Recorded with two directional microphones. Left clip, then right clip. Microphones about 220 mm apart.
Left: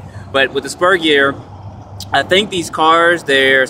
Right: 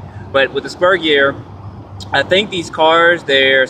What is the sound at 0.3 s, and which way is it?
Speech, 20° left (ahead or behind).